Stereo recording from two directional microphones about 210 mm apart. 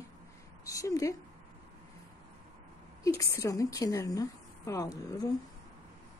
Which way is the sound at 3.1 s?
15° left (ahead or behind).